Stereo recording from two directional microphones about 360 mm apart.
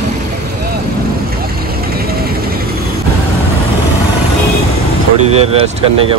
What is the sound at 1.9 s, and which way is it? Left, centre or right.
Vehicle, right.